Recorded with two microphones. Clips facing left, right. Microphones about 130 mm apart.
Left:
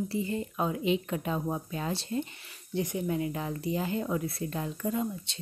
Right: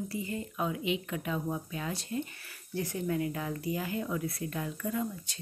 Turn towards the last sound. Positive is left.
turn(degrees=25)  # may be behind; listen again after turning